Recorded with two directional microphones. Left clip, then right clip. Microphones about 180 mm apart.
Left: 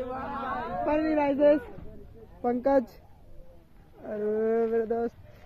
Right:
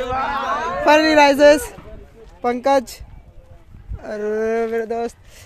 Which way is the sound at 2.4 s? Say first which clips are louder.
Right 8 dB; 30° right (ahead or behind).